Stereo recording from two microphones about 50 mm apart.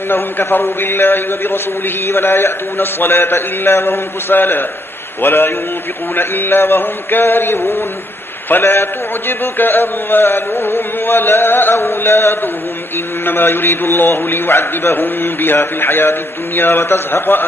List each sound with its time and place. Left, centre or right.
0.1 s a man's voice: left
13.2 s a man's voice: left